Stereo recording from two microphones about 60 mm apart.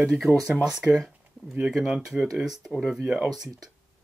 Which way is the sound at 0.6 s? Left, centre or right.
Centre.